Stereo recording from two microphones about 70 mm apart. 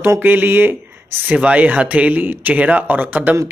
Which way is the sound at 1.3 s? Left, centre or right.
Centre.